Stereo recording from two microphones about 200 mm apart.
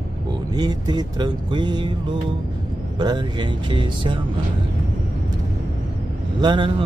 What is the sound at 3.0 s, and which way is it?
Mantra, 20° right (ahead or behind).